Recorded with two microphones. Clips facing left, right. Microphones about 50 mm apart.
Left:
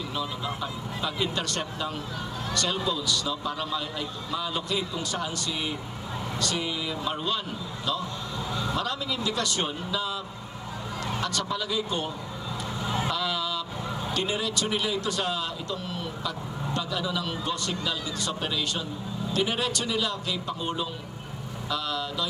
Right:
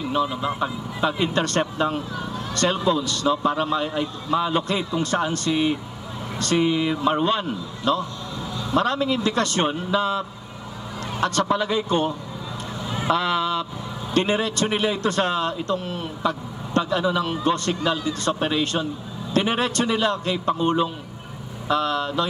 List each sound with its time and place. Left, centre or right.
0.1 s a man's voice: right
13.1 s a man's voice: right